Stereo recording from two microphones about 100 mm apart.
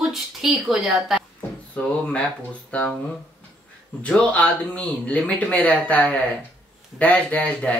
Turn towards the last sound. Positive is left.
turn(degrees=15)  # may be behind; listen again after turning